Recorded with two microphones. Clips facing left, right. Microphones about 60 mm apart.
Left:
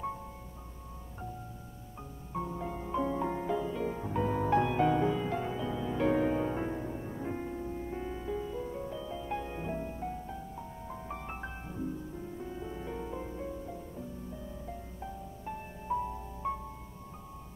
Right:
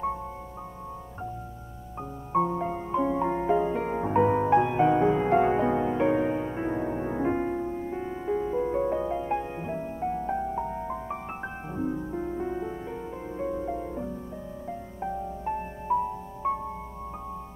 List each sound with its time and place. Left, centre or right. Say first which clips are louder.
2.3 s music: right 11 dB; right
5.9 s music: right 4 dB; centre
6.7 s music: right 9 dB; right
10.2 s music: right 13 dB; right
12.7 s music: right 3 dB; centre
13.4 s music: right 10 dB; right
15.9 s music: right 7 dB; right